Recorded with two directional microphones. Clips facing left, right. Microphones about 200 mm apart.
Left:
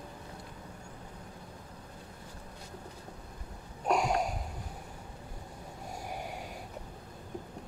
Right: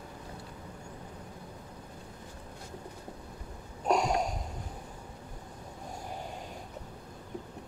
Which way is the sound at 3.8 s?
Centre (ahead or behind).